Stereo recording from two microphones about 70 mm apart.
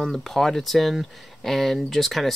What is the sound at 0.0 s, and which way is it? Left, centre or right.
Speech, centre.